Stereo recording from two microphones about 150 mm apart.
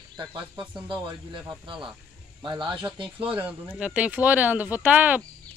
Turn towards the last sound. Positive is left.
turn(degrees=-10)  # may be behind; listen again after turning